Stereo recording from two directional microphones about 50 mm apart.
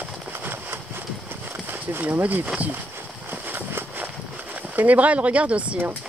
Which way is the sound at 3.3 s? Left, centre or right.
Right.